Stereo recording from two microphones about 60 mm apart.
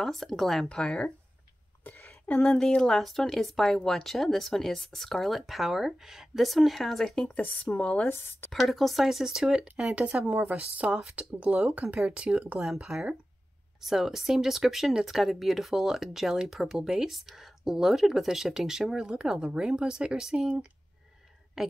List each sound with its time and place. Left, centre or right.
0.0 s speech: centre
1.9 s a sound: left
2.4 s speech: centre
7.7 s speech: left
8.1 s speech: left
8.5 s speech: centre
10.2 s a woman's voice: right; by 20.4 s centre
21.6 s speech: centre